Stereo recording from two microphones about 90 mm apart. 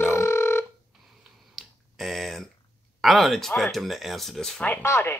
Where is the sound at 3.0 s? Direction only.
Centre (ahead or behind).